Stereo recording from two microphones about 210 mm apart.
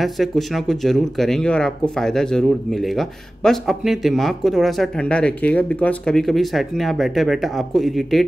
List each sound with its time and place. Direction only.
0.0 s speech: centre (ahead or behind)